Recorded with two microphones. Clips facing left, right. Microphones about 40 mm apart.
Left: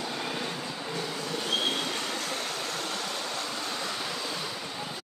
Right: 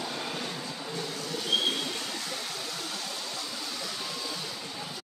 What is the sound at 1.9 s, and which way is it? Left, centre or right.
Vehicle, left.